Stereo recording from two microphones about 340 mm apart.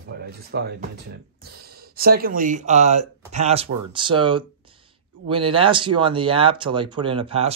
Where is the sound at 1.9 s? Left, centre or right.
Right.